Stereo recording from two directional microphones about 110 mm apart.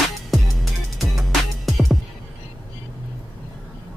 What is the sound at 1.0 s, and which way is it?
Music, centre (ahead or behind).